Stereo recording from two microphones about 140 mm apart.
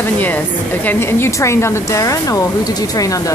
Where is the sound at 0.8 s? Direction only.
15° left (ahead or behind).